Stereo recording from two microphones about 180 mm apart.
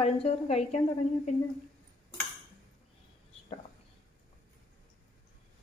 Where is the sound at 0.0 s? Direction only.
35° left (ahead or behind).